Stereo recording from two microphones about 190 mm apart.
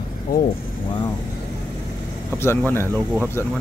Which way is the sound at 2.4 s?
10° left (ahead or behind).